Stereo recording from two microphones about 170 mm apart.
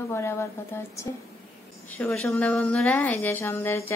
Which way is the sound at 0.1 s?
15° left (ahead or behind).